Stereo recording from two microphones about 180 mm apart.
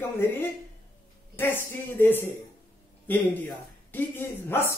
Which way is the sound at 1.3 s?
10° left (ahead or behind).